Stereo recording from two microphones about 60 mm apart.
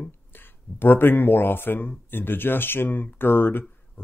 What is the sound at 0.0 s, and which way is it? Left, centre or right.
Speech, left.